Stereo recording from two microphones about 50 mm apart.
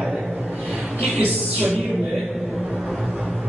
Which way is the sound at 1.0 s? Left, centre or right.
Right.